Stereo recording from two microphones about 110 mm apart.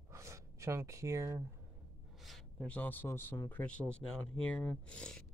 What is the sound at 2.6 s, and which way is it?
Speech, 15° left (ahead or behind).